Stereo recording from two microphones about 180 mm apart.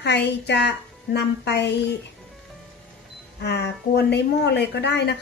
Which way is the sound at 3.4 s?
70° left (ahead or behind).